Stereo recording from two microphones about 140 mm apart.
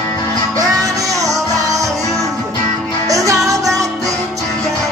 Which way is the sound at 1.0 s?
25° right (ahead or behind).